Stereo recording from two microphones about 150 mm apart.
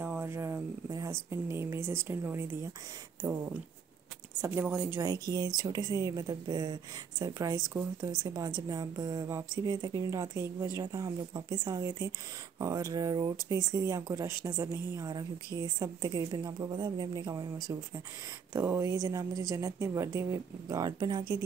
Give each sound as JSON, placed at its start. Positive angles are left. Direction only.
{"t": 0.0, "sound": "a sound", "side_deg": -15}
{"t": 1.3, "sound": "speech", "side_deg": -15}
{"t": 4.4, "sound": "speech", "side_deg": -15}
{"t": 5.0, "sound": "speech", "side_deg": -25}
{"t": 18.5, "sound": "speech", "side_deg": -15}